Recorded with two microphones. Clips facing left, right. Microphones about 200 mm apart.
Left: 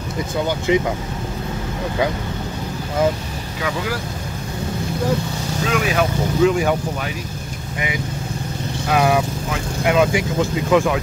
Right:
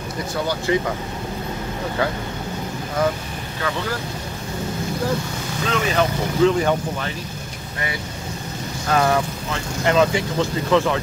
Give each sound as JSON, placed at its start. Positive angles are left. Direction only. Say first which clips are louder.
{"t": 0.7, "sound": "speech", "louder": "left 3 dB", "side_deg": 15}
{"t": 3.6, "sound": "speech", "louder": "left 1 dB", "side_deg": 10}
{"t": 5.7, "sound": "speech", "louder": "left 1 dB", "side_deg": 10}
{"t": 8.8, "sound": "speech", "louder": "left 2 dB", "side_deg": 10}